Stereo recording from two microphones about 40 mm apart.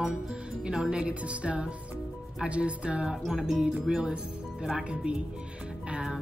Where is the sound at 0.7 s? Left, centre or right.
Centre.